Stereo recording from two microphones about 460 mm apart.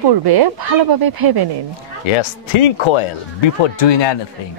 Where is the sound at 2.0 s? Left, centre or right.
Left.